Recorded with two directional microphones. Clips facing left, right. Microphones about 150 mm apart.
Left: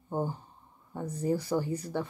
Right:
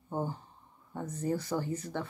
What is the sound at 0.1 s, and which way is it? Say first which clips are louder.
Speech: left 2 dB; 15° left (ahead or behind).